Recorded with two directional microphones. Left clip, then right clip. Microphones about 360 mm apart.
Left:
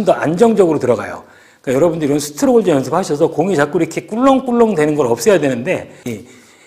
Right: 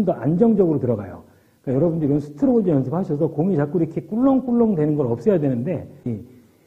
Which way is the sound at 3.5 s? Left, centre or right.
Centre.